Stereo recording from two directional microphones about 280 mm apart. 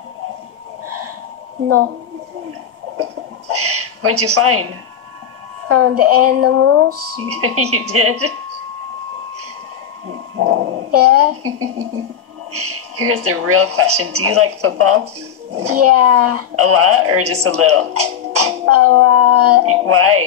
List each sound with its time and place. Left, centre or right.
3.0 s a sound: right
5.7 s speech: right
10.9 s speech: right